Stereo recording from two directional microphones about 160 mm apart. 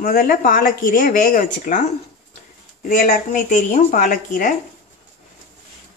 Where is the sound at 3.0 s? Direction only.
75° left (ahead or behind).